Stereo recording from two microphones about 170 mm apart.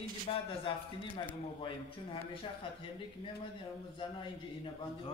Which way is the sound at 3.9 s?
30° left (ahead or behind).